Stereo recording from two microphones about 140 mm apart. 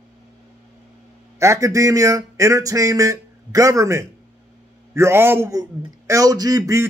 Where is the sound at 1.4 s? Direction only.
20° right (ahead or behind).